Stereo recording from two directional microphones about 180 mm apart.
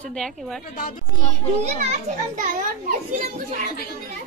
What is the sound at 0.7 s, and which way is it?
Speech, 50° left (ahead or behind).